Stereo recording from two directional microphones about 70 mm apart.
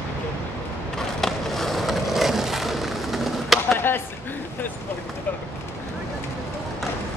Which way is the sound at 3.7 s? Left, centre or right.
Left.